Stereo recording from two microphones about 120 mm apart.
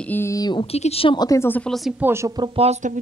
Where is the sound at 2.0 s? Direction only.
20° right (ahead or behind).